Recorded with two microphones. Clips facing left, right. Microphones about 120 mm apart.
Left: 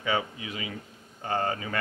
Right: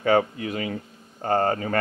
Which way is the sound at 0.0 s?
50° right (ahead or behind).